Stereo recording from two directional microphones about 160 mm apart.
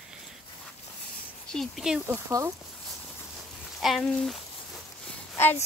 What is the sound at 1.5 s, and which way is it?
Speech, centre (ahead or behind).